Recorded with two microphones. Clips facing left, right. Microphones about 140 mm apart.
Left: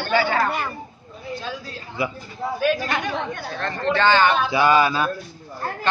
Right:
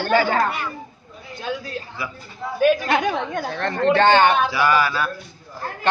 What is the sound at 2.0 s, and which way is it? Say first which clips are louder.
Speech: left 9 dB; 25° left (ahead or behind).